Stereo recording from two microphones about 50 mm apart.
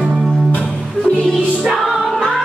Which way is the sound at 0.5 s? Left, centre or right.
Left.